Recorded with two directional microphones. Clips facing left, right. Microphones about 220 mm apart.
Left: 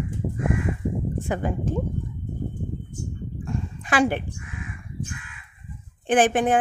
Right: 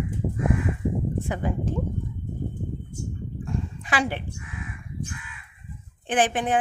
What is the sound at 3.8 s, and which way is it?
Speech, 50° left (ahead or behind).